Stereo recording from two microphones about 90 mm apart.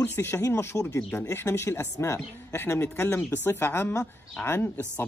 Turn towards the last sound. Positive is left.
turn(degrees=20)  # may be behind; listen again after turning